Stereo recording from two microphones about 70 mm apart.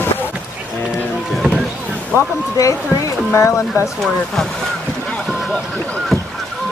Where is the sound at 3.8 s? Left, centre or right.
Centre.